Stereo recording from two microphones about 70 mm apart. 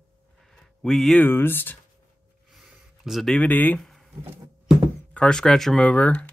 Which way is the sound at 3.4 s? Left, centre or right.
Left.